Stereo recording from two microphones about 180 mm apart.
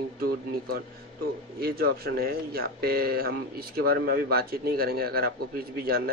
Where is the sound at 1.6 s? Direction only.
60° right (ahead or behind).